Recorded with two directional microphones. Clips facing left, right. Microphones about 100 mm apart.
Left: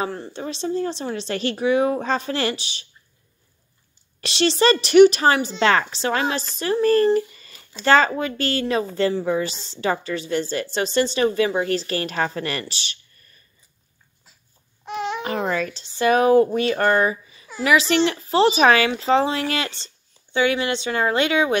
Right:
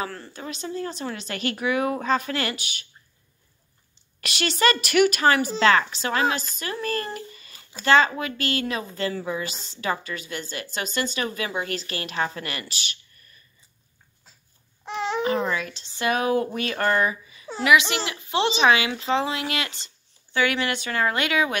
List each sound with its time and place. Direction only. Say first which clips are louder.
0.0 s a woman's voice: left 5 dB; 25° left (ahead or behind)
4.2 s a woman's voice: left 4 dB; 30° left (ahead or behind)
7.2 s a sound: left 14 dB; 35° left (ahead or behind)
7.8 s a woman's voice: left 2 dB; 35° left (ahead or behind)
14.9 s babbling: even; 35° right (ahead or behind)
15.2 s a woman's voice: left 1 dB; 40° left (ahead or behind)